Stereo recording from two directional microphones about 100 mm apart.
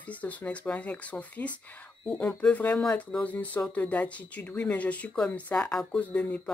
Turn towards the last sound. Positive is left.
turn(degrees=15)  # may be behind; listen again after turning